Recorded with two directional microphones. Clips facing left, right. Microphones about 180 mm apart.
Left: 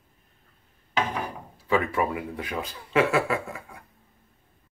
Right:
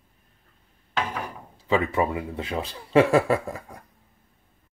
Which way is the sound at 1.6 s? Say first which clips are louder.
Right 2 dB; 20° right (ahead or behind).